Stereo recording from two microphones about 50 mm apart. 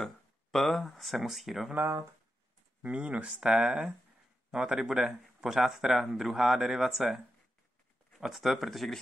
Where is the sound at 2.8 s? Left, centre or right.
Right; by 7.2 s centre.